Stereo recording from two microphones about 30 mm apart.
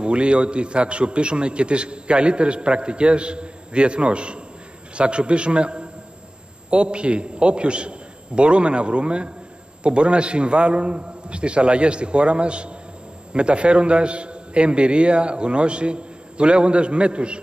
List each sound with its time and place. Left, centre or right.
0.0 s a man's voice: right